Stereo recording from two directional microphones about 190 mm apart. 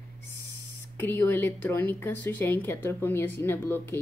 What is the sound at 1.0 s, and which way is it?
Speech, 10° left (ahead or behind).